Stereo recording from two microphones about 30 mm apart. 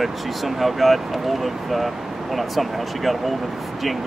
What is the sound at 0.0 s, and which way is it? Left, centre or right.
Speech, centre.